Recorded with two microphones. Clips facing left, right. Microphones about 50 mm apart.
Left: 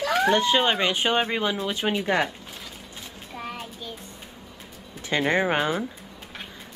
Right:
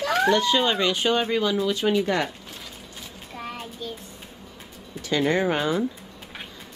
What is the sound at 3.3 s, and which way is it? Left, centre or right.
Child singing, centre.